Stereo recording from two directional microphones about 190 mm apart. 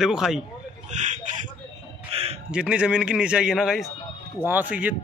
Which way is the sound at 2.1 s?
30° right (ahead or behind).